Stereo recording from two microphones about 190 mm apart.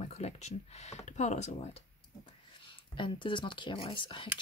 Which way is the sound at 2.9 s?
25° left (ahead or behind).